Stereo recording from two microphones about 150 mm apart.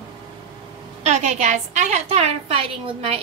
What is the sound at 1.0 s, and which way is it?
A woman's voice, 50° right (ahead or behind).